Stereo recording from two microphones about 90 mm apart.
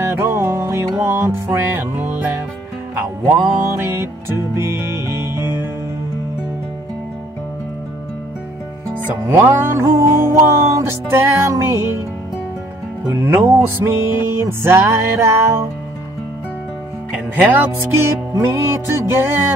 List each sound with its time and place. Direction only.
0.0 s music: 30° right (ahead or behind)
9.0 s music: 25° right (ahead or behind)
13.1 s music: 30° right (ahead or behind)
17.1 s music: 20° right (ahead or behind)